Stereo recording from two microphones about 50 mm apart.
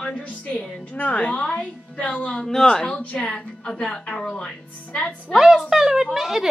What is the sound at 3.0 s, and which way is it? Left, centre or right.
Speech, left.